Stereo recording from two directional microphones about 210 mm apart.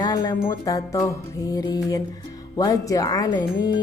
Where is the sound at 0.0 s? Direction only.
15° left (ahead or behind).